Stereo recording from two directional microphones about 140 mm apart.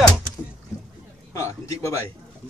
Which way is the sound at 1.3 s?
20° left (ahead or behind).